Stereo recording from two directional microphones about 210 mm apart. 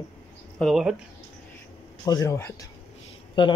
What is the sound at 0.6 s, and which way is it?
Speech, centre (ahead or behind).